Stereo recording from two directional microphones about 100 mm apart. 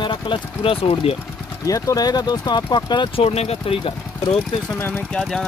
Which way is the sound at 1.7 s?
40° left (ahead or behind).